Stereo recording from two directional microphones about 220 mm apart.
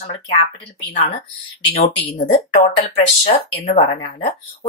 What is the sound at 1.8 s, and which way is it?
Speech, 30° left (ahead or behind).